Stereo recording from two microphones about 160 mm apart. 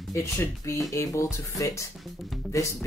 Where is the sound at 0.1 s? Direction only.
20° left (ahead or behind).